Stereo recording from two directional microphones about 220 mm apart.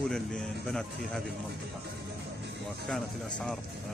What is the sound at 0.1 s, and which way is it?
Speech, 5° left (ahead or behind).